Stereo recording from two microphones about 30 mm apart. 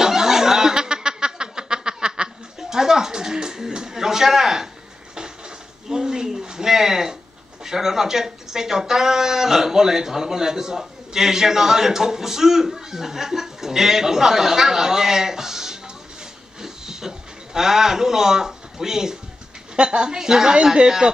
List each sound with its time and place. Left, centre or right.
0.0 s snicker: centre
2.7 s a sound: centre
5.9 s a sound: right
7.6 s speech: centre
16.6 s hiss: centre
17.6 s speech: centre
19.7 s a woman's voice: right